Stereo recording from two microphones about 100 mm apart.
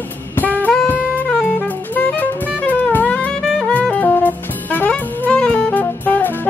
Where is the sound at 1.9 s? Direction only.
15° left (ahead or behind).